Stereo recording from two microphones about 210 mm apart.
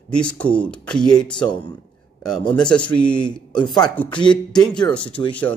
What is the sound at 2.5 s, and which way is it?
Speech, 5° left (ahead or behind).